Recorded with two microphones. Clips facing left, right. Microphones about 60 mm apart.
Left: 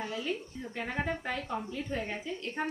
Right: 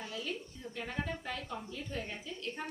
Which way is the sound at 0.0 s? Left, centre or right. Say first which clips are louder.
Left 5 dB; left.